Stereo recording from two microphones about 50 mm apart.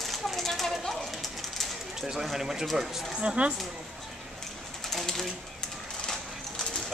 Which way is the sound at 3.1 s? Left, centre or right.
Right.